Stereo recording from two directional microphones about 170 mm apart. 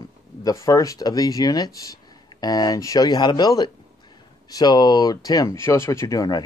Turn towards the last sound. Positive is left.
turn(degrees=20)  # may be behind; listen again after turning